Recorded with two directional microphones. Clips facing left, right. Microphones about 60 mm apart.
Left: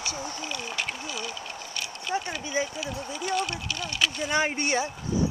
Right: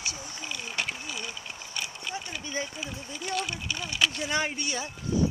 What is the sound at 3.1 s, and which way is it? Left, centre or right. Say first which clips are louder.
Speech: left 3 dB; centre.